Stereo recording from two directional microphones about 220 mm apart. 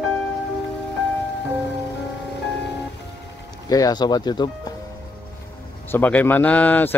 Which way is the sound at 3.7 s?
15° left (ahead or behind).